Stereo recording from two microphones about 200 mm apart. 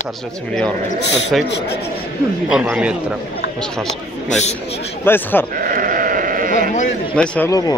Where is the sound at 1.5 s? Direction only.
60° left (ahead or behind).